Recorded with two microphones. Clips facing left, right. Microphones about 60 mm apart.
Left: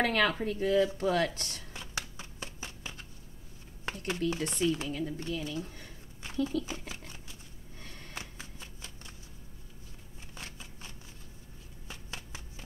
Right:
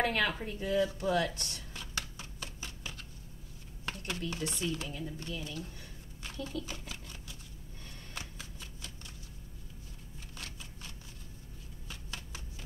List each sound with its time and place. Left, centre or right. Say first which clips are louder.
0.0 s speech: left 3 dB; left
1.7 s a sound: left 1 dB; left
4.4 s speech: left 5 dB; left
4.9 s speech: left 6 dB; left
5.4 s speech: left 5 dB; left
6.9 s a sound: left 1 dB; left
10.3 s shuffling cards: left 2 dB; left